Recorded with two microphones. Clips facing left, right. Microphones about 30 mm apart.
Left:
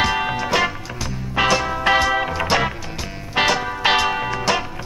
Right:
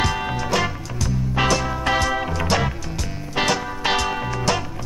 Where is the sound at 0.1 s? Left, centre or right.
Centre.